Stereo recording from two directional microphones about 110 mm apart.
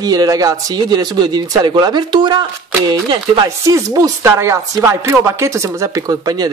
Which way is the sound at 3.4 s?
30° right (ahead or behind).